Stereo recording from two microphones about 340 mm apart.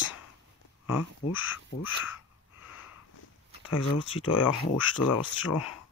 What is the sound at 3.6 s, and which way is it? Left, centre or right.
Speech, left.